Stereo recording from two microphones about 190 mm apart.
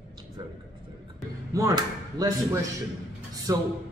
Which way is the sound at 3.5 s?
20° right (ahead or behind).